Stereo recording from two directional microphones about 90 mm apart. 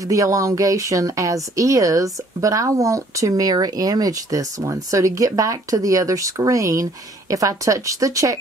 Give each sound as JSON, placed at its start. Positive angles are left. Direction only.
{"t": 0.1, "sound": "speech", "side_deg": -40}